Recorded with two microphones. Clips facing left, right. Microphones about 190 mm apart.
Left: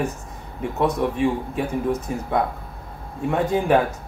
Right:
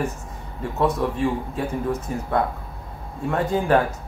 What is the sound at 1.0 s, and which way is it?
Speech, 15° left (ahead or behind).